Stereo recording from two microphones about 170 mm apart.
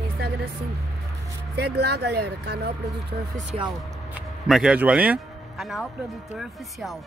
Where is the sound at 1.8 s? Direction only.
75° right (ahead or behind).